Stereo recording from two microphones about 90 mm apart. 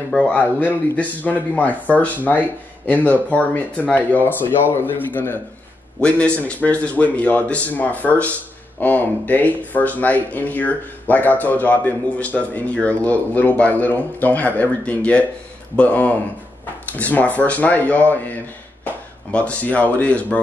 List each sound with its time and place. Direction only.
0.1 s speech: 15° left (ahead or behind)
5.9 s speech: 10° left (ahead or behind)
19.3 s speech: 15° left (ahead or behind)